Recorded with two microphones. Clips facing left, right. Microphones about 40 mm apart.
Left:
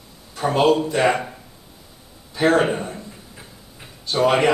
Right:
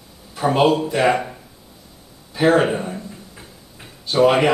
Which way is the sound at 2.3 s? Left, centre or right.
Centre.